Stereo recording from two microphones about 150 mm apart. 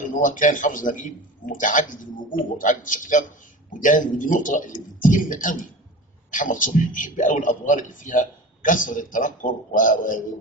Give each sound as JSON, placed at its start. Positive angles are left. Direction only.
{"t": 0.1, "sound": "a man's voice", "side_deg": 60}